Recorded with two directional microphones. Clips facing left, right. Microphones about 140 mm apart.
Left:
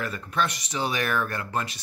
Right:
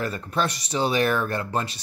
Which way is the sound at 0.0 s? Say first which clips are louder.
Right 2 dB; 35° right (ahead or behind).